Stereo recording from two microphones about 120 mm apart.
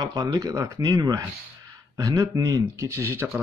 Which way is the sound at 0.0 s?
30° right (ahead or behind).